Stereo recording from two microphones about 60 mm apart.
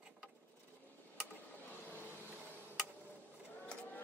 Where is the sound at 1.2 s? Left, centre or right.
Left.